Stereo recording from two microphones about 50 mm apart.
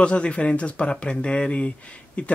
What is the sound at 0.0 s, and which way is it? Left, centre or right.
Speech, left.